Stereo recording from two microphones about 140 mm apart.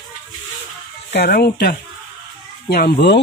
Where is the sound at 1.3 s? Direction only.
90° left.